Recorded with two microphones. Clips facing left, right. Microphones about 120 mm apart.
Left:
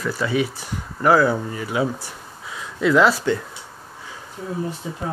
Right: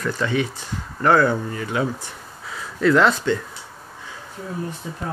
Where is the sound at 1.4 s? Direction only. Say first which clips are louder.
Left 1 dB; 20° left (ahead or behind).